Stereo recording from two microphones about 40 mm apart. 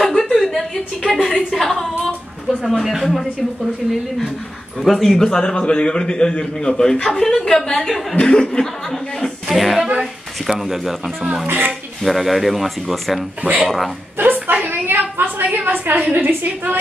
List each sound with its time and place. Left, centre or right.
0.2 s a sound: centre
2.8 s speech: centre
4.8 s speech: centre
5.1 s a man's voice: centre
8.2 s speech: left
9.2 s speech: centre
11.4 s a woman's voice: right
12.0 s speech: centre
13.4 s speech: right
14.1 s a woman's voice: right